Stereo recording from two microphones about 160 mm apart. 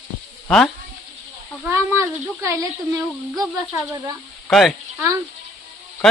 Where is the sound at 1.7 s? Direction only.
15° right (ahead or behind).